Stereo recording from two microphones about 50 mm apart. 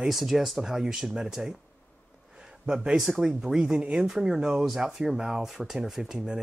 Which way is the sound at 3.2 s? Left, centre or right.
Centre.